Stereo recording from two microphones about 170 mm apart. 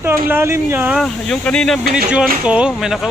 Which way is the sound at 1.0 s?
5° left (ahead or behind).